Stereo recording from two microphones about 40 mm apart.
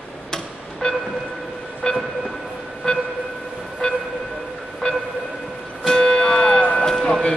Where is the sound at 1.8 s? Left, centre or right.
Left.